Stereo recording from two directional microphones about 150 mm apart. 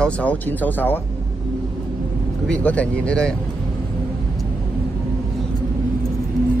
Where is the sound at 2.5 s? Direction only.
10° left (ahead or behind).